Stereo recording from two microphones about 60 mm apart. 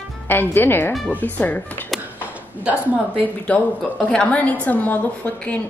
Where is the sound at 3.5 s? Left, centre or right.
Left.